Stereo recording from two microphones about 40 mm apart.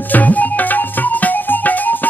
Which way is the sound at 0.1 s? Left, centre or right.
Left.